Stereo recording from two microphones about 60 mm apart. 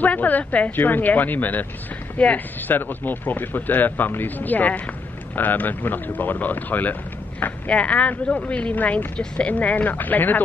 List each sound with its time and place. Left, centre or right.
0.0 s speech: left